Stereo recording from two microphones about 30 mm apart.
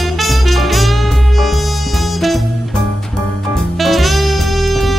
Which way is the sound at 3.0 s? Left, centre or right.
Centre.